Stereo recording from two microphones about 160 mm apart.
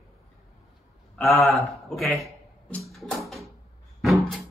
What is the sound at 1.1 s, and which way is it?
Speech, centre (ahead or behind).